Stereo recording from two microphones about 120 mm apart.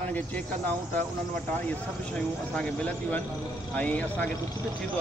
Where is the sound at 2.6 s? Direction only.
10° left (ahead or behind).